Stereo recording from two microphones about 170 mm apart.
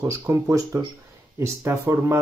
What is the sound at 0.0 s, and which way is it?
Speech, 15° right (ahead or behind).